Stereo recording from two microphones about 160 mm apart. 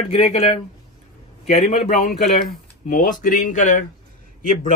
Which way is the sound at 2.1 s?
60° left (ahead or behind).